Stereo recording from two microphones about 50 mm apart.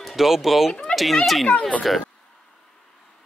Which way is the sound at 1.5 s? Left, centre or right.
Left.